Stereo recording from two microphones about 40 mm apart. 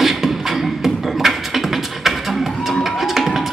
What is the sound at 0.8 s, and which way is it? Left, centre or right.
Beatboxing, centre.